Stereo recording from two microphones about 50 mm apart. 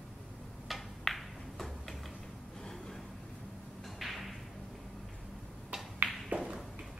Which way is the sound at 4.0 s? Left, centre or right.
Centre.